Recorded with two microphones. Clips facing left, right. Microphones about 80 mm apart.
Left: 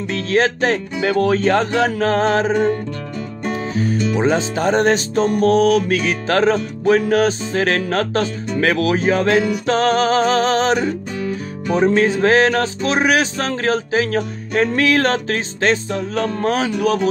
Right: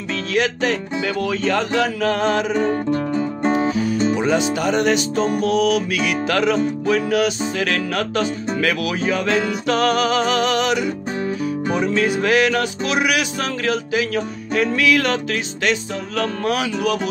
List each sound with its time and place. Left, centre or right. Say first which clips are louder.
0.1 s speech: left 3 dB; left
2.7 s music: right 4 dB; right
3.7 s music: even; left
4.2 s speech: left 1 dB; left